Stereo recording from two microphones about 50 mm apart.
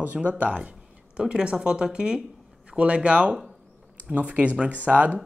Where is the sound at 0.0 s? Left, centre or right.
Right.